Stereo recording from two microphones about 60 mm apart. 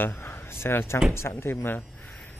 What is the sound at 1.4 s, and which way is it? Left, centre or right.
Speech, left.